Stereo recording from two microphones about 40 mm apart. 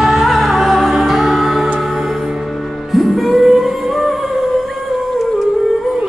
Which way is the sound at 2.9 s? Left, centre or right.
Centre.